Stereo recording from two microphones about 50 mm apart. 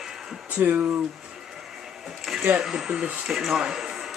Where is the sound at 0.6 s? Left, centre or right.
Right.